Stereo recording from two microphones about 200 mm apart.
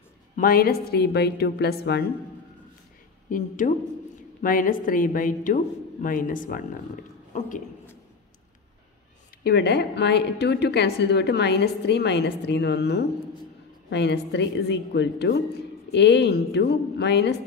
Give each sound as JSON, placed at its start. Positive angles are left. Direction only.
{"t": 0.4, "sound": "a woman's voice", "side_deg": 45}
{"t": 3.3, "sound": "a woman's voice", "side_deg": 40}
{"t": 9.4, "sound": "a woman's voice", "side_deg": 55}